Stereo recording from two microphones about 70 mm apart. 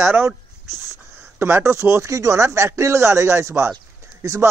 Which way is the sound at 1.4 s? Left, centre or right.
Right.